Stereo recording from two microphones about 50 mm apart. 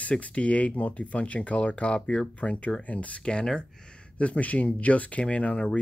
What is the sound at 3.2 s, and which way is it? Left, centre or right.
Speech, centre.